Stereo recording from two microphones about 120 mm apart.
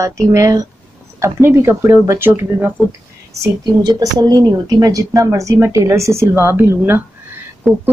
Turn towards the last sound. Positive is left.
turn(degrees=-5)  # may be behind; listen again after turning